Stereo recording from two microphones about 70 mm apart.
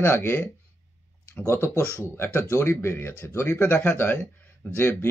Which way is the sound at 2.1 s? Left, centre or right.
Left.